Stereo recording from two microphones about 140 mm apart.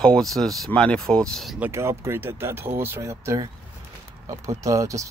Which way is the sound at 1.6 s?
20° right (ahead or behind).